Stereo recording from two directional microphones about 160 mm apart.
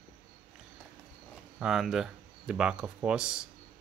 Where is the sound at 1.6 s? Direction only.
5° right (ahead or behind).